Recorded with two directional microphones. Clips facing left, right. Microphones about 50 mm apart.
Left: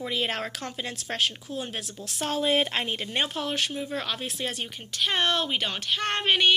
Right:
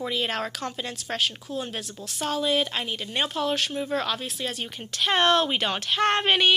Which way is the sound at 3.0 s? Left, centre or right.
Centre.